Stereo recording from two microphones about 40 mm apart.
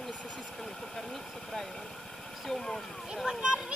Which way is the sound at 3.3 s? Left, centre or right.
Right.